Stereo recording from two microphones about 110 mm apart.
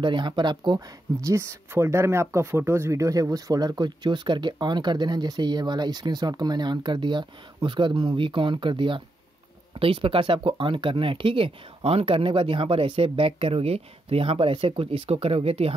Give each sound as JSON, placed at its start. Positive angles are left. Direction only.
{"t": 0.0, "sound": "speech", "side_deg": -45}
{"t": 1.2, "sound": "speech", "side_deg": -25}